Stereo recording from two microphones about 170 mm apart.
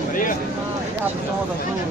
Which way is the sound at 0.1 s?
55° left (ahead or behind).